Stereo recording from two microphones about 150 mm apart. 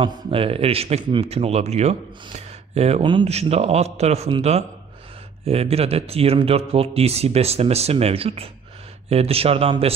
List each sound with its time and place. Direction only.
0.0 s speech: 40° right (ahead or behind)